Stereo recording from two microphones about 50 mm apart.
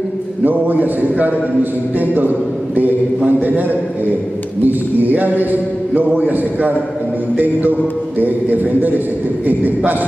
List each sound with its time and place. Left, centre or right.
0.4 s a man's voice: right
8.2 s a man's voice: right